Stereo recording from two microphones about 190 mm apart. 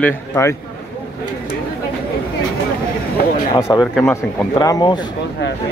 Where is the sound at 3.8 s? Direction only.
Centre (ahead or behind).